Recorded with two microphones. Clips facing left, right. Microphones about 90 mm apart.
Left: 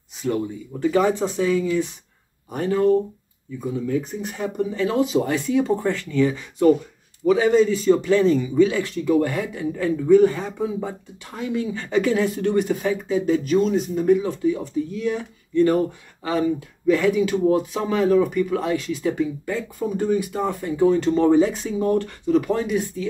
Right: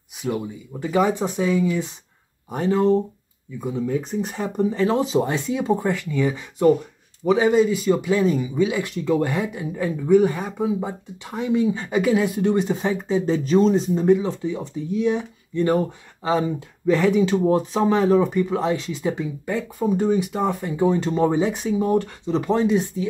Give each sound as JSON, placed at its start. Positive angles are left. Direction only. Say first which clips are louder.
{"t": 0.2, "sound": "speech", "louder": "left 2 dB", "side_deg": -10}